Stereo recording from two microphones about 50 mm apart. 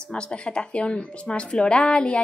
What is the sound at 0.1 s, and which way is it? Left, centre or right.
Speech, centre.